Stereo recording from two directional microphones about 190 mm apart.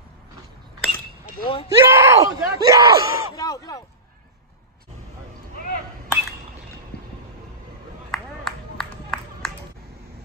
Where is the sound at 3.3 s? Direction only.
20° left (ahead or behind).